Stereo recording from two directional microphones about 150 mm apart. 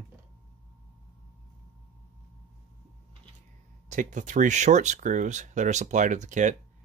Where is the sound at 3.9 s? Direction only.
55° right (ahead or behind).